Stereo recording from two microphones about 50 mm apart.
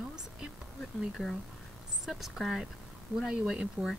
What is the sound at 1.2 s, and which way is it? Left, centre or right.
Speech, centre.